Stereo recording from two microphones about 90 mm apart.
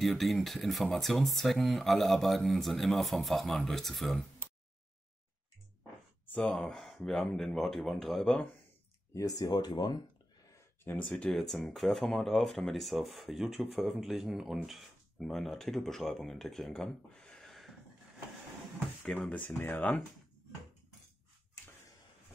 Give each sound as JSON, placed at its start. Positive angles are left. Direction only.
{"t": 0.0, "sound": "speech", "side_deg": 0}
{"t": 6.2, "sound": "gasp", "side_deg": 15}
{"t": 6.5, "sound": "speech", "side_deg": 5}
{"t": 9.1, "sound": "speech", "side_deg": 40}
{"t": 10.8, "sound": "speech", "side_deg": 20}
{"t": 11.3, "sound": "speech", "side_deg": 0}
{"t": 19.0, "sound": "speech", "side_deg": 15}